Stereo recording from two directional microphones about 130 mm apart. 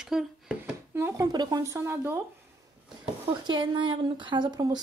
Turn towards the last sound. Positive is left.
turn(degrees=-35)  # may be behind; listen again after turning